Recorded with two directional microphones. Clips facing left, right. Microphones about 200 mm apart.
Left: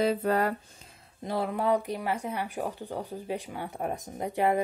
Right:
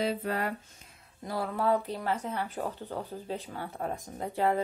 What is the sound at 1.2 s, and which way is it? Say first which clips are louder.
Speech: left 2 dB; 20° left (ahead or behind).